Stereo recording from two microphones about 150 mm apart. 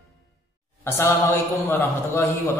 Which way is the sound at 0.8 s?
15° left (ahead or behind).